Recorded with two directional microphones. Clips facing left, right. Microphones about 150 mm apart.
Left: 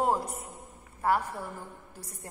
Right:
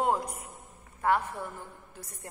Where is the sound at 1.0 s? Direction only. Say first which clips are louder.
Even; 10° left (ahead or behind).